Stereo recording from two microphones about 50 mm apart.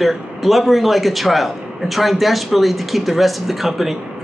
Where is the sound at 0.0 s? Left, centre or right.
Centre.